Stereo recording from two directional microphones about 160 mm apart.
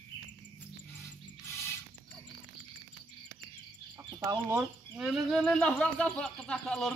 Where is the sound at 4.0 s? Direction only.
20° right (ahead or behind).